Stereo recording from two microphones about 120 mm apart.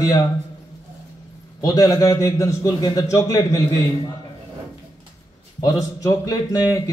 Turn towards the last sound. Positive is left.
turn(degrees=30)  # may be behind; listen again after turning